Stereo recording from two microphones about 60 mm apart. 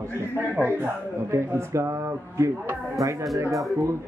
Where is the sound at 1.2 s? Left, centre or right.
Right.